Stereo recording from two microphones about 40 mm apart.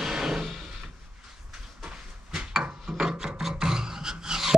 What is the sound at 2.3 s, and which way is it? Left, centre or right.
Filing, centre.